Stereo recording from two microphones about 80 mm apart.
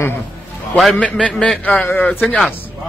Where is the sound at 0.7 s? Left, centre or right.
Centre.